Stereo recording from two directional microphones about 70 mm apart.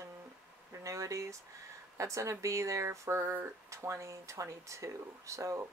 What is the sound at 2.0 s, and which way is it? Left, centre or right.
Speech, right.